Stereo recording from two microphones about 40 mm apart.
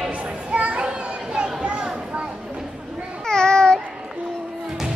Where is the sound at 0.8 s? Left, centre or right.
Right.